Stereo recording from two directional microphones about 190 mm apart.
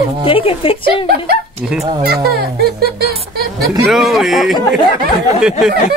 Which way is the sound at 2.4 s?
55° right (ahead or behind).